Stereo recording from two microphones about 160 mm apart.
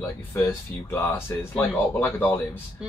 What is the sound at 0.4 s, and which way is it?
Speech, 15° left (ahead or behind).